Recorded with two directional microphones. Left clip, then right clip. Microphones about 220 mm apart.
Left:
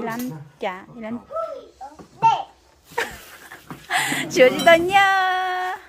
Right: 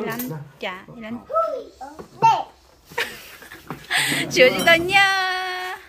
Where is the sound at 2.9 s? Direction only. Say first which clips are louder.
Even; 20° left (ahead or behind).